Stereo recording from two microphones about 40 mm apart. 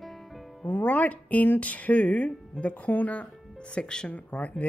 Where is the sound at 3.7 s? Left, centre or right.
Left.